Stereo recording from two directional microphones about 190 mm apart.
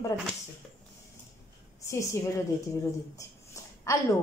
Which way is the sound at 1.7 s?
15° left (ahead or behind).